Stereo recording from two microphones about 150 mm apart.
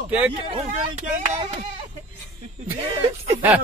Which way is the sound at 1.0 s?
60° right (ahead or behind).